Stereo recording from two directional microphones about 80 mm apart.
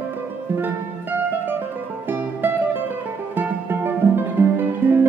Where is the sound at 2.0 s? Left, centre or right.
Right.